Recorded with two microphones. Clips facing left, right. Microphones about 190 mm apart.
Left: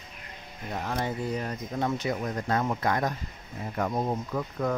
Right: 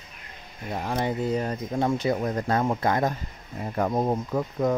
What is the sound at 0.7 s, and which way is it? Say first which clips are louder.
Speech: right 4 dB; 15° right (ahead or behind).